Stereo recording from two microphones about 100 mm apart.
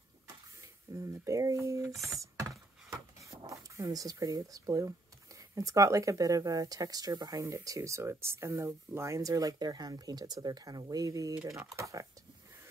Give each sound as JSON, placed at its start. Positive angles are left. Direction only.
{"t": 0.9, "sound": "speech", "side_deg": -30}
{"t": 2.0, "sound": "a sound", "side_deg": -30}
{"t": 2.9, "sound": "speech", "side_deg": -35}